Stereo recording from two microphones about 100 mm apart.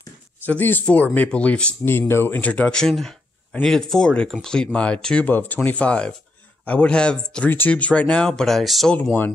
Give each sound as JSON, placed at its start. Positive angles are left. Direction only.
{"t": 0.5, "sound": "speech", "side_deg": 20}
{"t": 1.9, "sound": "speech", "side_deg": 25}